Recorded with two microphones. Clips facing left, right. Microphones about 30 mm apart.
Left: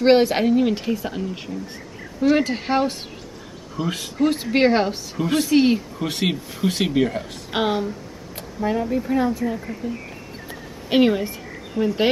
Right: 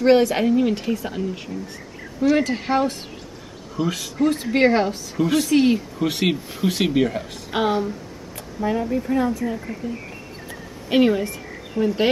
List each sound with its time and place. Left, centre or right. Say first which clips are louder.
0.0 s a woman's voice: even; left
0.5 s speech: even; centre
10.9 s a woman's voice: even; centre